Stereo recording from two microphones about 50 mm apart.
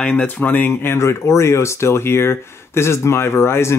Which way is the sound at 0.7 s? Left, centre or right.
Left.